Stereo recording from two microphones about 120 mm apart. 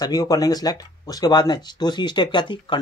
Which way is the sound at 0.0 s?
30° left (ahead or behind).